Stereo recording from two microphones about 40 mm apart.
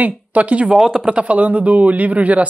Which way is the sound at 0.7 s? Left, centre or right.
Centre.